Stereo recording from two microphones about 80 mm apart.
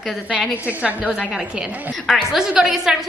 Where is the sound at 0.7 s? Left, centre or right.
Centre.